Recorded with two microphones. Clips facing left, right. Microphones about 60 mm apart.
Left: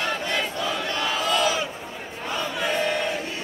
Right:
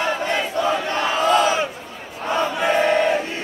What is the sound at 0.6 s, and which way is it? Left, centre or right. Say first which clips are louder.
Battle cry: right 6 dB; right.